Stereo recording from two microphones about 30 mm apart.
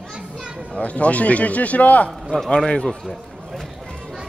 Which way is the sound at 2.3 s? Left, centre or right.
Left.